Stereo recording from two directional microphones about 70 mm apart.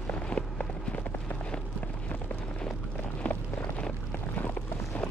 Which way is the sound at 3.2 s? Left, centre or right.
Centre.